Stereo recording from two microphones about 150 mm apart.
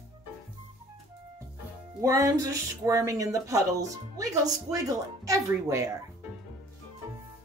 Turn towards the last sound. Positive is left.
turn(degrees=-20)  # may be behind; listen again after turning